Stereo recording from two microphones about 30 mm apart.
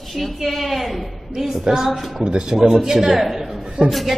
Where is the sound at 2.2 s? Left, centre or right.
Right.